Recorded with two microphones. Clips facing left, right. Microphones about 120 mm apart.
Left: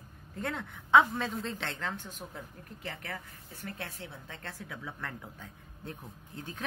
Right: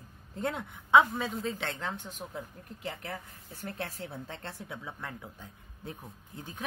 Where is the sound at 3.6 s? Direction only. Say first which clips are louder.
Right 3 dB; 35° right (ahead or behind).